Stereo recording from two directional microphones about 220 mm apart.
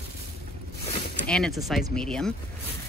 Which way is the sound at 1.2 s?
5° left (ahead or behind).